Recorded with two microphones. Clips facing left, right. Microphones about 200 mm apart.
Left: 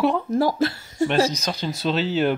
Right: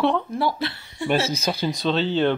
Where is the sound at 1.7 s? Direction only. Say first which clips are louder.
Left 2 dB; 5° left (ahead or behind).